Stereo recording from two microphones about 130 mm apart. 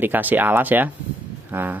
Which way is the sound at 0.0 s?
15° right (ahead or behind).